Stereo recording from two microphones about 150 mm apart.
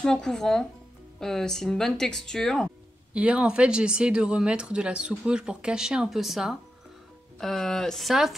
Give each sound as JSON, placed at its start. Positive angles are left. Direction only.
{"t": 0.0, "sound": "speech", "side_deg": 5}
{"t": 3.1, "sound": "speech", "side_deg": -10}